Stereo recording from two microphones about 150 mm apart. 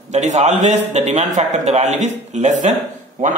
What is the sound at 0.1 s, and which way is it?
A man's voice, 50° right (ahead or behind).